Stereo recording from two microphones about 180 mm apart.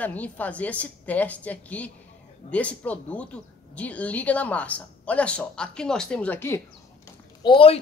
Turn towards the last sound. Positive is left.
turn(degrees=30)  # may be behind; listen again after turning